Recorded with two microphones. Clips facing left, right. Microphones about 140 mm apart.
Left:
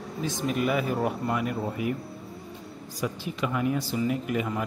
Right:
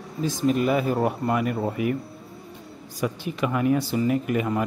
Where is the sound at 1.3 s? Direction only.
55° right (ahead or behind).